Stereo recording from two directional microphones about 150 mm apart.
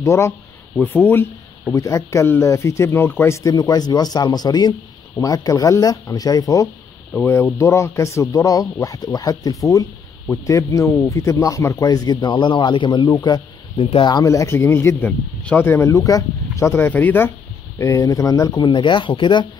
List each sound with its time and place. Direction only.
0.0 s speech: 20° left (ahead or behind)
13.7 s speech: 40° left (ahead or behind)